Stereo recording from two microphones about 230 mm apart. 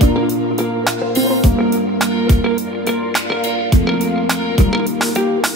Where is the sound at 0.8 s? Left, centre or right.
Centre.